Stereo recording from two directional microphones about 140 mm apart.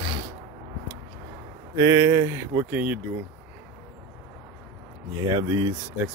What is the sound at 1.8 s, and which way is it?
Speech, 25° right (ahead or behind).